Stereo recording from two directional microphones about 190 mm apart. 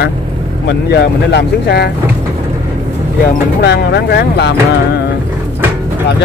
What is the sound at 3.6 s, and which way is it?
Speech, 60° left (ahead or behind).